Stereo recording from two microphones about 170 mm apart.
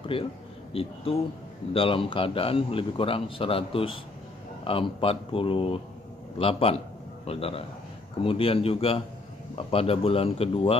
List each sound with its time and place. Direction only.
0.0 s a man's voice: 30° left (ahead or behind)